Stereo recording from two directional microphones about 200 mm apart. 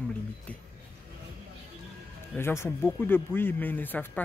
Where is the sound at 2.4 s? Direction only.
10° left (ahead or behind).